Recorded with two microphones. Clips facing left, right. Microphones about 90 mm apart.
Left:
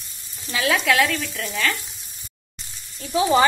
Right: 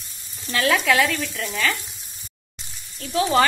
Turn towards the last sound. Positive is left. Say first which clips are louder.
# left 1 dB
turn(degrees=15)  # may be behind; listen again after turning